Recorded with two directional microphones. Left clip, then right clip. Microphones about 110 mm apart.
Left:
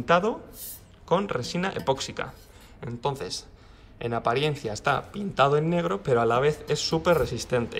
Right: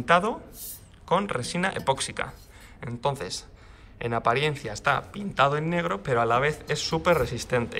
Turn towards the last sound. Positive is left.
turn(degrees=30)  # may be behind; listen again after turning